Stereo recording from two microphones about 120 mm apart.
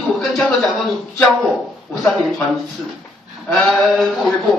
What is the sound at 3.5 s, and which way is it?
Speech, 5° left (ahead or behind).